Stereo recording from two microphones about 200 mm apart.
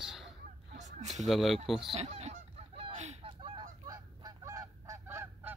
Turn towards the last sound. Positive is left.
turn(degrees=-10)  # may be behind; listen again after turning